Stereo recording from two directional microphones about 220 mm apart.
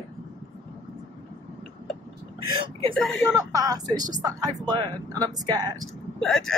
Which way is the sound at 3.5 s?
15° right (ahead or behind).